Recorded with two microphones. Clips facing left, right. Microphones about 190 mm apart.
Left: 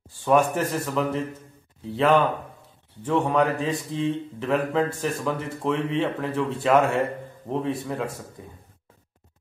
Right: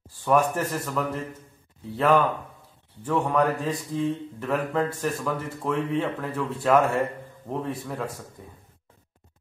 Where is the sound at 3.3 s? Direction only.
Centre (ahead or behind).